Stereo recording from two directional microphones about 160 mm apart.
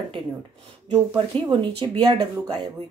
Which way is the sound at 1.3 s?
10° left (ahead or behind).